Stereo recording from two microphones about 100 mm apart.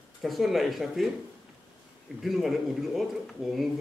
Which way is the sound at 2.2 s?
Centre (ahead or behind).